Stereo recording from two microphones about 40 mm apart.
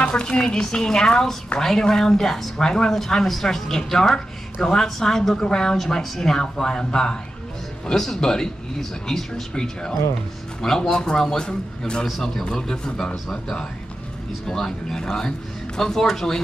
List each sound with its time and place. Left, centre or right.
0.0 s a woman's voice: left
13.1 s speech: centre